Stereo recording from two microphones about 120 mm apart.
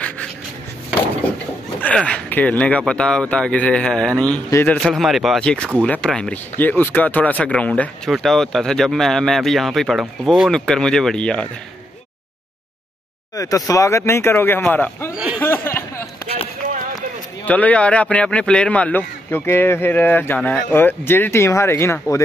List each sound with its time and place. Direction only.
1.8 s speech: 10° left (ahead or behind)
13.4 s speech: 30° left (ahead or behind)
15.3 s a sound: 15° left (ahead or behind)
17.5 s speech: 10° left (ahead or behind)